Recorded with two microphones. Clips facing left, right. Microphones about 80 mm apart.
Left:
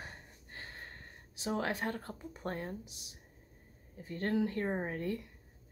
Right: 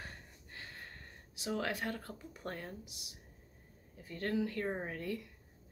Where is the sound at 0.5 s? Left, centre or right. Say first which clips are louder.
Left 2 dB; left.